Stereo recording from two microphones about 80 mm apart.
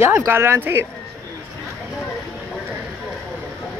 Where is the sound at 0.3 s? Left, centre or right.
Right.